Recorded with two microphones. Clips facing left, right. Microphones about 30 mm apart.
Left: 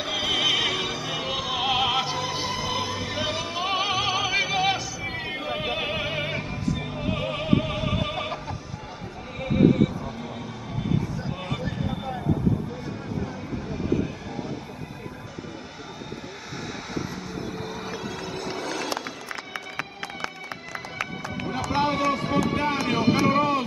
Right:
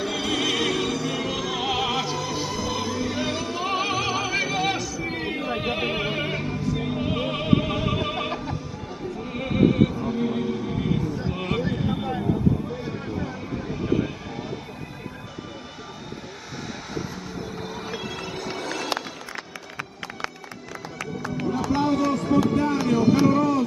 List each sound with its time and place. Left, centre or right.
0.0 s music: centre
5.1 s music: centre
13.7 s vehicle: centre
16.9 s vehicle: centre
21.6 s run: left
22.1 s music: left
23.2 s a sound: left